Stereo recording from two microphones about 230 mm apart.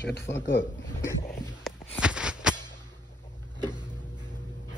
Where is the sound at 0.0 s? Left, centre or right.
Left.